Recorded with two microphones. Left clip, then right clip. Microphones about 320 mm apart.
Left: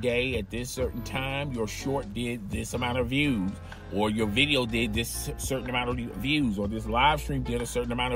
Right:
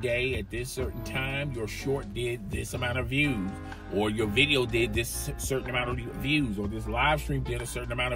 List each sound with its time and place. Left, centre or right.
0.0 s speech: centre